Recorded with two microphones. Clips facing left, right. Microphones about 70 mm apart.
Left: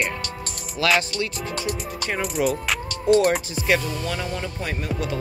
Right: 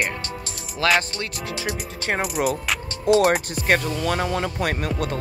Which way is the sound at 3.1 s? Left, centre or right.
Right.